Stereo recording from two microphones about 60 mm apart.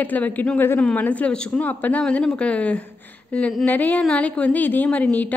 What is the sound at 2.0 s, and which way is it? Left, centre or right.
A woman's voice, centre.